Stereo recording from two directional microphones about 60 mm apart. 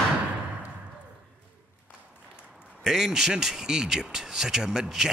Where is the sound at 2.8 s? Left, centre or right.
Centre.